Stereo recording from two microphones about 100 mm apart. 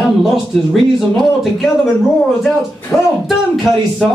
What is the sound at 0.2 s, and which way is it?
Speech, centre (ahead or behind).